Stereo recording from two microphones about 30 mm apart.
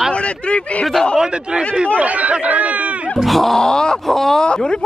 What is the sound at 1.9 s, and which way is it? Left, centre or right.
Speech, right.